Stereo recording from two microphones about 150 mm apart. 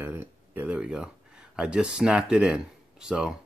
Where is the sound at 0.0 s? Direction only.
15° right (ahead or behind).